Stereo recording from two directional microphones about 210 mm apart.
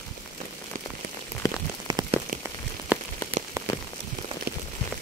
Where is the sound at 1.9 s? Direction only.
15° right (ahead or behind).